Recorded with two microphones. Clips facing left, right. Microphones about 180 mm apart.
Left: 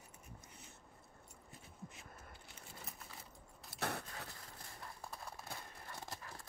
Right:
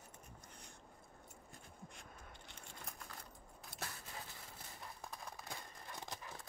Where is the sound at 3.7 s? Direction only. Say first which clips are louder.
Left 9 dB; 65° left (ahead or behind).